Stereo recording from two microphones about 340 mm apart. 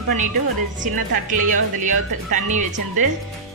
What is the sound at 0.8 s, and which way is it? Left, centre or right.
Speech, right.